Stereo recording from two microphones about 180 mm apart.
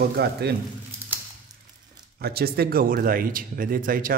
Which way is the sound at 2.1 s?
60° right (ahead or behind).